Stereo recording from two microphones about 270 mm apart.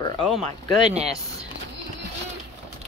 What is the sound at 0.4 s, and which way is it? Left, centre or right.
Speech, right.